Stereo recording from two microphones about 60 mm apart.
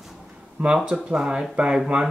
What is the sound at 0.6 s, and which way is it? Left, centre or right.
Speech, right.